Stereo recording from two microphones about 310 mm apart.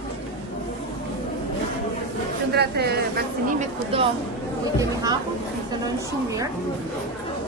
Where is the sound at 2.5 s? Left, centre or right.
Right.